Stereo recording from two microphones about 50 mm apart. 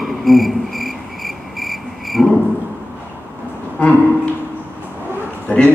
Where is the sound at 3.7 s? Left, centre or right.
Left.